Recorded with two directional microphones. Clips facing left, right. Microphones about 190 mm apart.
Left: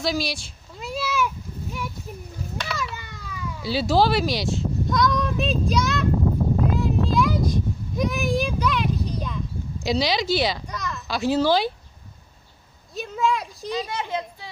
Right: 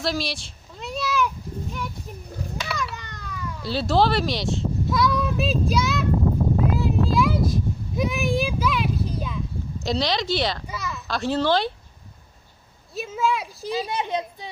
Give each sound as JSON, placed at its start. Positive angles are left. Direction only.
{"t": 0.0, "sound": "a sound", "side_deg": 0}
{"t": 9.8, "sound": "a child's voice", "side_deg": 5}
{"t": 12.9, "sound": "speech", "side_deg": -5}
{"t": 13.9, "sound": "a child's voice", "side_deg": -20}